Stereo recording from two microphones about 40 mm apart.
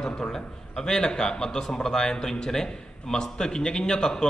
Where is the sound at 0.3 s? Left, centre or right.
Centre.